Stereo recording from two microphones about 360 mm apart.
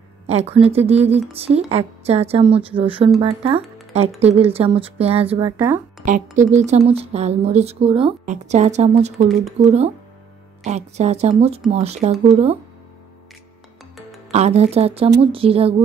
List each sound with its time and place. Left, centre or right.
0.3 s speech: centre
5.6 s speech: centre
6.0 s speech: centre
14.3 s speech: centre